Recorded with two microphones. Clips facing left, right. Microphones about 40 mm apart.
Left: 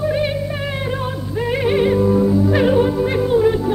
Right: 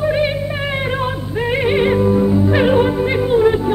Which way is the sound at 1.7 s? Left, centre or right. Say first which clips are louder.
Even; right.